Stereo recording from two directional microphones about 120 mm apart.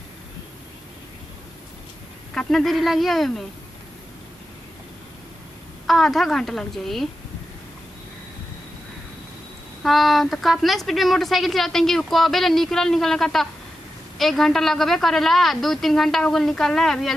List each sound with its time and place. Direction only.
2.3 s a woman's voice: centre (ahead or behind)
5.9 s a woman's voice: centre (ahead or behind)
9.8 s a woman's voice: centre (ahead or behind)